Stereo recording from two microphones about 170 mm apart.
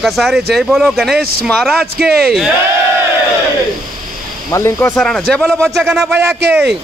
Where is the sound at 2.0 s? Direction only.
65° right (ahead or behind).